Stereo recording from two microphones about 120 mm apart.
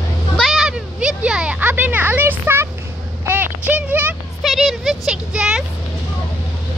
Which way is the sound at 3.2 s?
15° right (ahead or behind).